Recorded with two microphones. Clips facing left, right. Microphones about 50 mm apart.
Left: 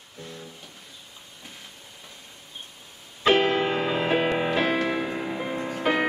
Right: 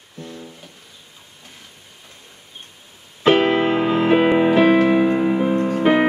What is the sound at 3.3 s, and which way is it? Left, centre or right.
Music, right.